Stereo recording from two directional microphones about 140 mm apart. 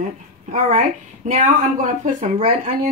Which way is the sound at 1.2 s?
60° right (ahead or behind).